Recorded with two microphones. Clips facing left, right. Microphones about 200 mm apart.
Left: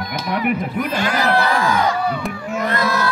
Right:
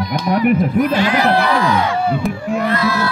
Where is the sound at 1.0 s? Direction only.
45° left (ahead or behind).